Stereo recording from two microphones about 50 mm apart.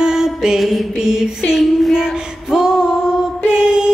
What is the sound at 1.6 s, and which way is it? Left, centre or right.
Female singing, centre.